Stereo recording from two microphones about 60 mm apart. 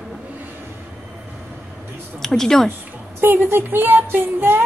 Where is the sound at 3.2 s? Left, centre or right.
Right.